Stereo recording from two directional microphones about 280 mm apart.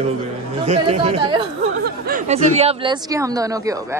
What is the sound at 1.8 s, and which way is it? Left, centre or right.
Speech, right.